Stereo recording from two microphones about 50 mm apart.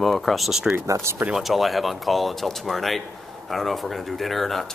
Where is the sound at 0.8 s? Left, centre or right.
Right.